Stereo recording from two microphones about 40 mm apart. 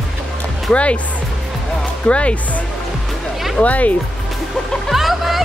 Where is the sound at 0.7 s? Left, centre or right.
Left.